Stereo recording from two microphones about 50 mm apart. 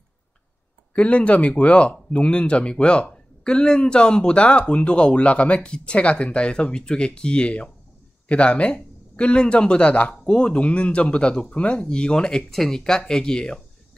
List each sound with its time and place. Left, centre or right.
0.9 s speech: left